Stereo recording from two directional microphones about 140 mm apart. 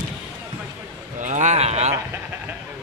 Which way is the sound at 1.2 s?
60° right (ahead or behind).